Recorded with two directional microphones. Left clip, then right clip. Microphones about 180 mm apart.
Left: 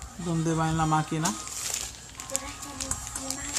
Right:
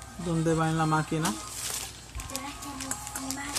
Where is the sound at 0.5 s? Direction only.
15° left (ahead or behind).